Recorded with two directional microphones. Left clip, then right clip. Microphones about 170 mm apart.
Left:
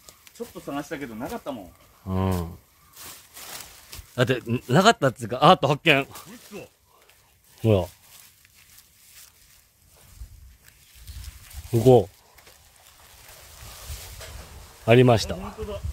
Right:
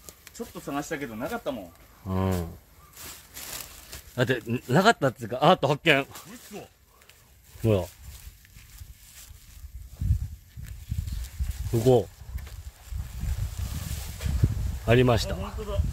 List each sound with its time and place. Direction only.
0.7 s speech: 75° right (ahead or behind)
2.0 s speech: centre (ahead or behind)
3.3 s a sound: 15° right (ahead or behind)
4.1 s speech: 15° left (ahead or behind)
7.6 s speech: 10° left (ahead or behind)
11.7 s speech: 15° left (ahead or behind)
14.9 s speech: 20° left (ahead or behind)